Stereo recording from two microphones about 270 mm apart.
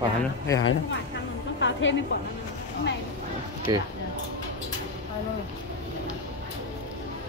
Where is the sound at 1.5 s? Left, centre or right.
Left.